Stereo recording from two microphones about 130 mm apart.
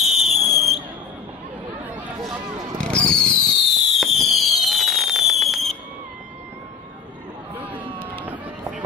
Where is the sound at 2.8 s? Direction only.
5° left (ahead or behind).